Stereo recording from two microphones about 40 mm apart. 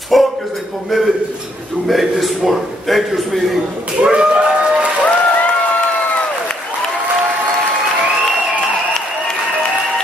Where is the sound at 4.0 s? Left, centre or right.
Right.